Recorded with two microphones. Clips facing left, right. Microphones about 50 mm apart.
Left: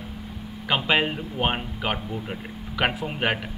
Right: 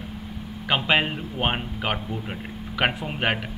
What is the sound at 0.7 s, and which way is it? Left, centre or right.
Speech, centre.